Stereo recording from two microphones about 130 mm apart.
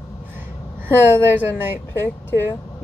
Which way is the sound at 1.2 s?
15° right (ahead or behind).